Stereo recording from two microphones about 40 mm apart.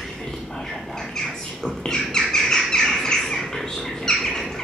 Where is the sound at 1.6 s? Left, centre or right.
Centre.